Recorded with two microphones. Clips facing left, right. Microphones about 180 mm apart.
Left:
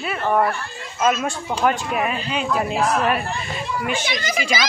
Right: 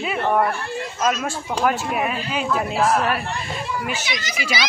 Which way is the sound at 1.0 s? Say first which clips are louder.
Left 3 dB; 5° left (ahead or behind).